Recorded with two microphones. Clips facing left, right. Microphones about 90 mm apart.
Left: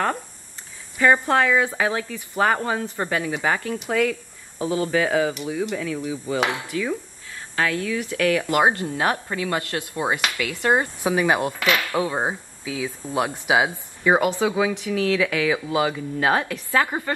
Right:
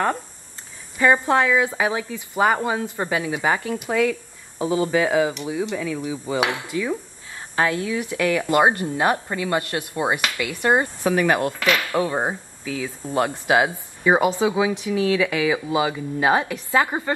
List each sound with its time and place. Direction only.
0.9 s speech: 15° right (ahead or behind)
7.5 s a woman's voice: 25° right (ahead or behind)
11.0 s speech: 15° left (ahead or behind)
14.0 s speech: 20° right (ahead or behind)